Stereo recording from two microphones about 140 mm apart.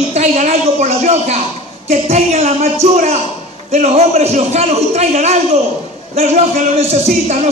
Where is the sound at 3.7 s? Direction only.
55° right (ahead or behind).